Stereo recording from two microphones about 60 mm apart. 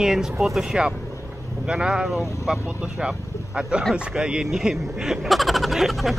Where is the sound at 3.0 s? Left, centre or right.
Centre.